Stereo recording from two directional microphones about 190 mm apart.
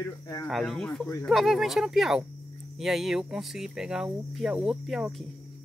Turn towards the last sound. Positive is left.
turn(degrees=0)  # may be behind; listen again after turning